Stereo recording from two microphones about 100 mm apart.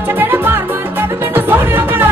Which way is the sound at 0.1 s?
20° right (ahead or behind).